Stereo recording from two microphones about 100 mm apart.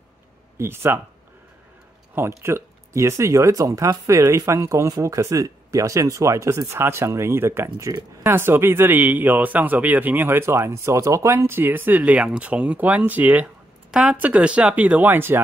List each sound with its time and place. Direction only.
0.6 s speech: 25° right (ahead or behind)
2.1 s speech: 25° right (ahead or behind)